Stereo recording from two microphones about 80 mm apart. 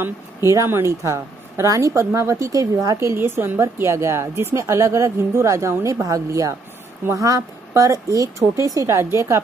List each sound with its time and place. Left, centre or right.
0.0 s a woman's voice: right